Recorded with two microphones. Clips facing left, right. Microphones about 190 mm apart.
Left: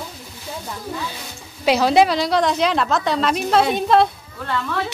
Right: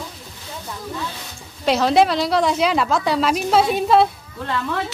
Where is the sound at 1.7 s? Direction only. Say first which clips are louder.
Left 1 dB; centre (ahead or behind).